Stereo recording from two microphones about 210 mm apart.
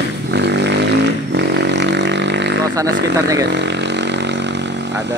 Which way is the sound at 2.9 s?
55° right (ahead or behind).